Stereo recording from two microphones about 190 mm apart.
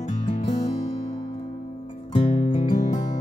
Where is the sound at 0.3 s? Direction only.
40° left (ahead or behind).